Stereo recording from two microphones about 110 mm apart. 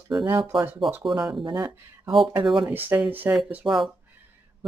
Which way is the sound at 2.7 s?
15° right (ahead or behind).